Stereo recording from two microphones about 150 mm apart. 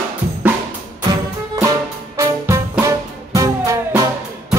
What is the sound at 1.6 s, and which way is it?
Music, 15° right (ahead or behind).